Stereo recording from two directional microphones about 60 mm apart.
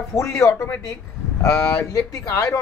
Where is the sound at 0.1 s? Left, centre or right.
Left.